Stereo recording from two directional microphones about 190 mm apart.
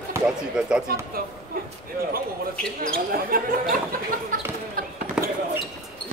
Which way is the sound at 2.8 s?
50° right (ahead or behind).